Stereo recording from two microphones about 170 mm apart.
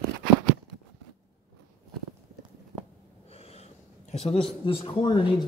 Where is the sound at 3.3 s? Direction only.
35° left (ahead or behind).